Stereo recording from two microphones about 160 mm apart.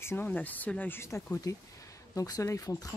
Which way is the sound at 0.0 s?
15° left (ahead or behind).